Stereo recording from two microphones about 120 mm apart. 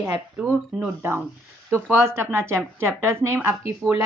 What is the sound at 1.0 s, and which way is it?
A woman's voice, 20° right (ahead or behind).